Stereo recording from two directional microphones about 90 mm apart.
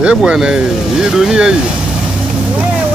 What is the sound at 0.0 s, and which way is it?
Speech, 10° right (ahead or behind).